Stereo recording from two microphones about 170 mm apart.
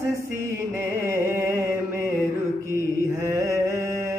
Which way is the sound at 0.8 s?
15° right (ahead or behind).